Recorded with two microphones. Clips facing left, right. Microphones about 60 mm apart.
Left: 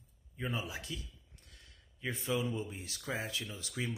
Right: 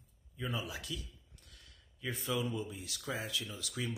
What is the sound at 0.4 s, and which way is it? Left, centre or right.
Speech, left.